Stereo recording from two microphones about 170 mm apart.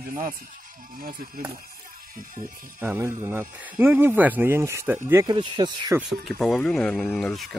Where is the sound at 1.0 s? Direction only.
55° right (ahead or behind).